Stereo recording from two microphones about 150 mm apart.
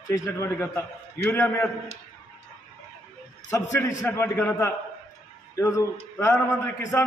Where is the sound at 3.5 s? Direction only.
15° left (ahead or behind).